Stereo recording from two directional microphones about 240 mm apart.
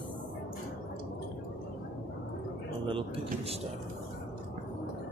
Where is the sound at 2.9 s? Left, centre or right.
Right.